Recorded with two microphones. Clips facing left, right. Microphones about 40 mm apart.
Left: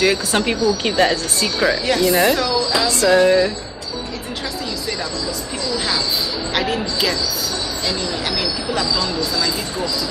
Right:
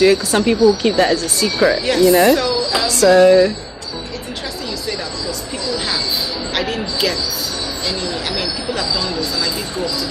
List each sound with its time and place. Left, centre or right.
0.0 s speech: centre
1.6 s speech: centre
3.1 s speech: centre
6.5 s speech: centre